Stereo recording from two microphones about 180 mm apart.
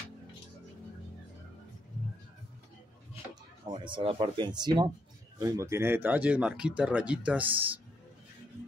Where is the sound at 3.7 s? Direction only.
25° right (ahead or behind).